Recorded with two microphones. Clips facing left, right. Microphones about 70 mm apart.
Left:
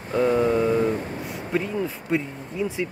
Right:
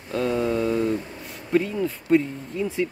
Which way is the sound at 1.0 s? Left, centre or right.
Left.